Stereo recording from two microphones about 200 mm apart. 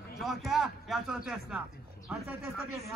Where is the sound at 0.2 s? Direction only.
Centre (ahead or behind).